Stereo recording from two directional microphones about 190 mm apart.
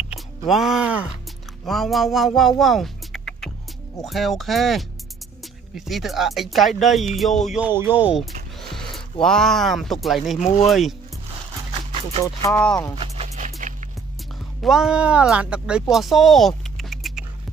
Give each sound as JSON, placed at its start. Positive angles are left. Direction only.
{"t": 0.5, "sound": "speech", "side_deg": 0}
{"t": 2.6, "sound": "music", "side_deg": 0}
{"t": 4.0, "sound": "speech", "side_deg": 0}
{"t": 8.5, "sound": "a sound", "side_deg": 0}
{"t": 9.2, "sound": "speech", "side_deg": 5}
{"t": 12.4, "sound": "speech", "side_deg": 5}
{"t": 13.0, "sound": "music", "side_deg": -35}
{"t": 14.6, "sound": "speech", "side_deg": 0}